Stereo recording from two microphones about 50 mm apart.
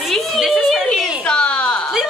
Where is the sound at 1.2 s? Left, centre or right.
Centre.